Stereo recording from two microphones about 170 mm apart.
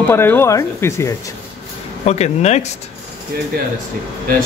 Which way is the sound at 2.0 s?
40° left (ahead or behind).